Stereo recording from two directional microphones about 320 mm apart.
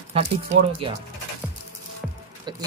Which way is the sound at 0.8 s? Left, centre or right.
Centre.